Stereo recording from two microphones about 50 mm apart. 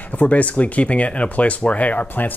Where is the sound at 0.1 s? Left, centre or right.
Left.